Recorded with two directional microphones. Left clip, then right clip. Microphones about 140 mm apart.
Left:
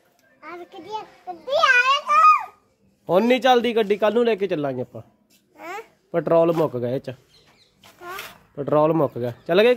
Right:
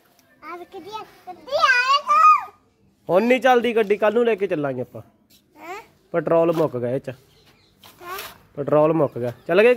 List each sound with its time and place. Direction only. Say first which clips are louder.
0.4 s a child's voice: right 2 dB; 15° left (ahead or behind)
7.8 s a sound: right 2 dB; 50° right (ahead or behind)
8.5 s a man's voice: right 1 dB; 25° left (ahead or behind)